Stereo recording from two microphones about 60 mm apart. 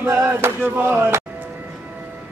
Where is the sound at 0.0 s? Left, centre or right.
Right.